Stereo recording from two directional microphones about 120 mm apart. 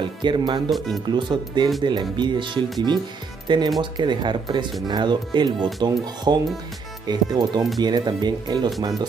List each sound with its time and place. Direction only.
0.2 s speech: 40° right (ahead or behind)
0.7 s speech: centre (ahead or behind)
1.0 s speech: 40° right (ahead or behind)